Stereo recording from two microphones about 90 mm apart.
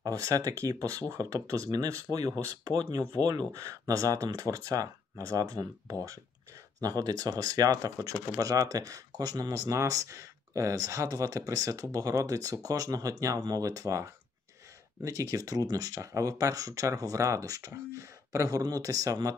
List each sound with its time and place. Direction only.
0.0 s speech: 40° right (ahead or behind)